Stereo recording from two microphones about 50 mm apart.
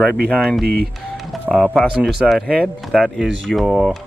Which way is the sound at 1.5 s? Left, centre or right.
Centre.